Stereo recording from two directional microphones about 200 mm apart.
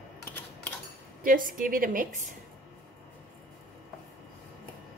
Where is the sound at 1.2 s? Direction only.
45° right (ahead or behind).